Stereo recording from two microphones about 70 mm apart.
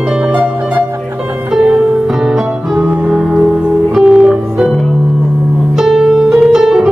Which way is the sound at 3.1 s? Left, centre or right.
Centre.